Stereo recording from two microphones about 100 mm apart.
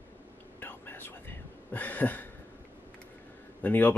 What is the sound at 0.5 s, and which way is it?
Whispering, 20° left (ahead or behind).